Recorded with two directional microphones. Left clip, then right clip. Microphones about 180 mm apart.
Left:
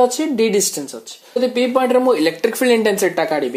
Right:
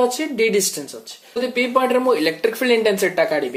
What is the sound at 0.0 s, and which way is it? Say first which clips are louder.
Speech: left 3 dB; 35° left (ahead or behind).